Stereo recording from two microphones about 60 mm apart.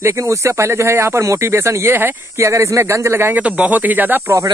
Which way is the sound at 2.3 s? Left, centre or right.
Right.